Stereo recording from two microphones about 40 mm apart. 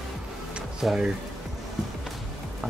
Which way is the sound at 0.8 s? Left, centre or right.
Centre.